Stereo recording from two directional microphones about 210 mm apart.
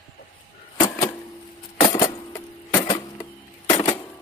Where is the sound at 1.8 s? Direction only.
15° left (ahead or behind).